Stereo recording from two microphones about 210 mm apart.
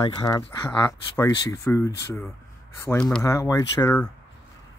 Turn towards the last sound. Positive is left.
turn(degrees=15)  # may be behind; listen again after turning